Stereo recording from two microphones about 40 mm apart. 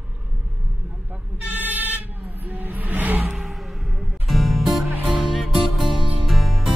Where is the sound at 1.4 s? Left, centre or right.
Right.